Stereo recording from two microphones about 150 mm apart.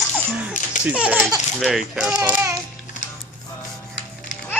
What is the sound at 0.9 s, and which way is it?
Laughter, 10° right (ahead or behind).